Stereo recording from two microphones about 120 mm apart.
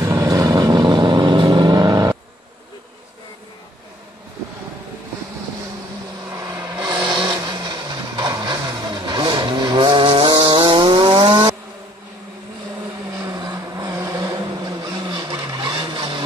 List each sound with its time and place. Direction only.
0.0 s vehicle: 25° right (ahead or behind)
6.3 s vehicle: 30° right (ahead or behind)
6.9 s vehicle: 40° right (ahead or behind)
13.2 s vehicle: 35° right (ahead or behind)
14.9 s vehicle: 40° right (ahead or behind)